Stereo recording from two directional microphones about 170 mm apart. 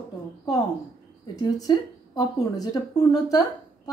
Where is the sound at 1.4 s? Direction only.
25° left (ahead or behind).